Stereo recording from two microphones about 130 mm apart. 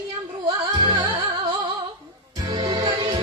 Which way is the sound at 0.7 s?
35° right (ahead or behind).